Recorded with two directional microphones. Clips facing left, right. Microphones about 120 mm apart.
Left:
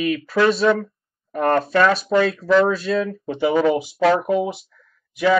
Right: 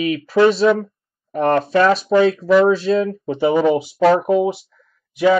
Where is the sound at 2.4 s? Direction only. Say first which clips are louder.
Right 3 dB; centre (ahead or behind).